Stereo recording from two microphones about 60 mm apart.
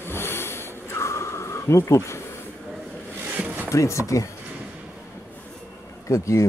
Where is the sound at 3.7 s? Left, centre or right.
Left.